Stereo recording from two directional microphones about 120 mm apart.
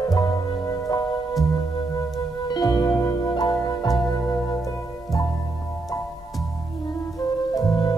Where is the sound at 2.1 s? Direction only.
35° left (ahead or behind).